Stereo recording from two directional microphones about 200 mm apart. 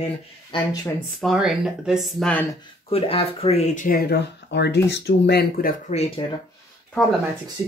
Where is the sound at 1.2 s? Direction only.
Centre (ahead or behind).